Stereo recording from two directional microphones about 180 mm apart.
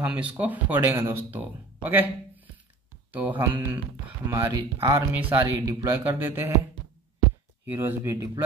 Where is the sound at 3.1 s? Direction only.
10° right (ahead or behind).